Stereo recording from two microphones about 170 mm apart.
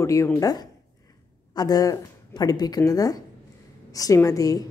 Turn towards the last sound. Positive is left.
turn(degrees=20)  # may be behind; listen again after turning